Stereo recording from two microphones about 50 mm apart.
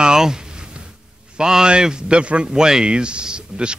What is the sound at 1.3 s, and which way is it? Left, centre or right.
Speech, centre.